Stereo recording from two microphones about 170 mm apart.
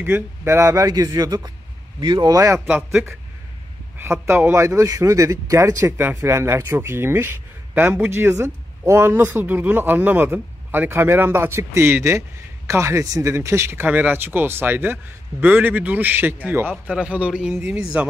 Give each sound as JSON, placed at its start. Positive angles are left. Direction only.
{"t": 0.0, "sound": "speech", "side_deg": -10}
{"t": 4.0, "sound": "speech", "side_deg": -15}